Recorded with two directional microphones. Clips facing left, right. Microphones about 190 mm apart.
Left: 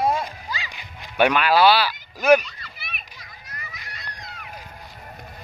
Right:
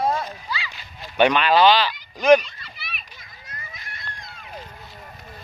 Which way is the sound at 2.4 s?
50° left (ahead or behind).